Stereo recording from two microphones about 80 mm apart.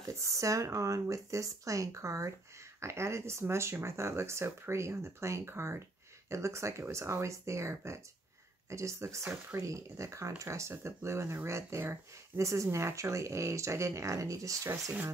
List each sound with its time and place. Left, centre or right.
0.1 s speech: right
14.7 s speech: right